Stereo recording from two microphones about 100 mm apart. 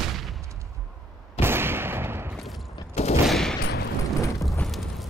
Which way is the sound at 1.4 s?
25° right (ahead or behind).